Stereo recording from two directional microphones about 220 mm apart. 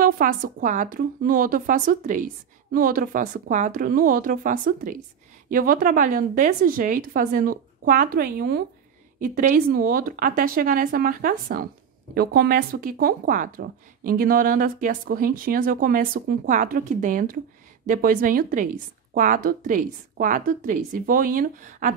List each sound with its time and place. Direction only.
0.0 s speech: 40° right (ahead or behind)